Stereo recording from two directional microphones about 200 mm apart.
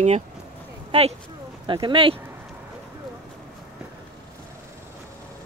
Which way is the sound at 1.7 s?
25° right (ahead or behind).